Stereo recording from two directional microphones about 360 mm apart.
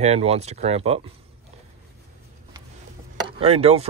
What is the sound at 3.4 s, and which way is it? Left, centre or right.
Speech, centre.